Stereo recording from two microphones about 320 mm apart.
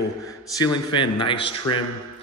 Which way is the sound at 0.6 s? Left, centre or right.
Centre.